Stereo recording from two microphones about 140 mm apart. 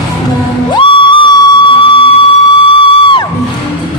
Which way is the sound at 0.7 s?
35° left (ahead or behind).